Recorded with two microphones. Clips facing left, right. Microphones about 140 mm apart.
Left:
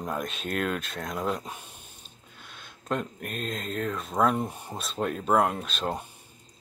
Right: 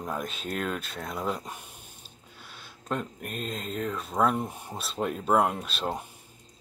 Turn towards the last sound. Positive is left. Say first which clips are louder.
# left 1 dB
turn(degrees=-5)  # may be behind; listen again after turning